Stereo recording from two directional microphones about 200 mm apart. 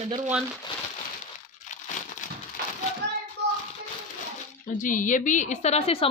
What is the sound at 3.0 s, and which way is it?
Child singing, 60° right (ahead or behind).